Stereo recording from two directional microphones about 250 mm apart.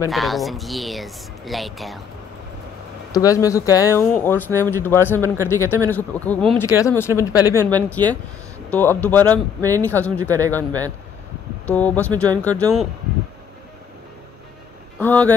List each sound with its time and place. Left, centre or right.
0.1 s speech: centre
3.1 s speech: centre
8.0 s speech: centre
8.6 s speech: centre
9.6 s speech: centre
9.8 s speech: centre
10.1 s speech: centre
11.6 s speech: centre
15.0 s speech: centre